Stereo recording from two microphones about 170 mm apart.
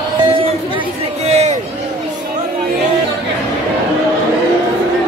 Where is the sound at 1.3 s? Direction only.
40° right (ahead or behind).